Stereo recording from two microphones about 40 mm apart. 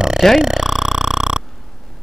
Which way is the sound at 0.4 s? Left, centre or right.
Centre.